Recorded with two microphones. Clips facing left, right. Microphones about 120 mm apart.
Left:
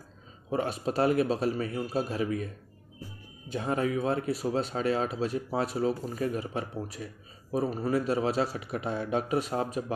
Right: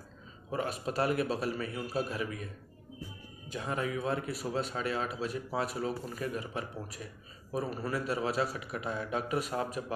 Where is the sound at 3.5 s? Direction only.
35° left (ahead or behind).